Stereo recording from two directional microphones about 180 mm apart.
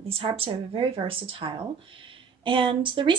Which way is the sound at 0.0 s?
30° right (ahead or behind).